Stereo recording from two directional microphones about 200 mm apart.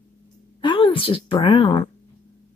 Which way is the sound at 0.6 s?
25° left (ahead or behind).